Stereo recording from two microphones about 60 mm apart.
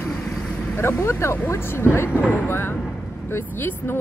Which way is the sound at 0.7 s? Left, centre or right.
Left.